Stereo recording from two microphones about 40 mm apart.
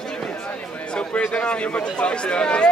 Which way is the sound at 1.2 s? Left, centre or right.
Left.